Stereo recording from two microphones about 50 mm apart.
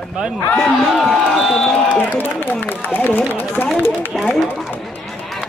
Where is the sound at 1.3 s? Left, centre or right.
Centre.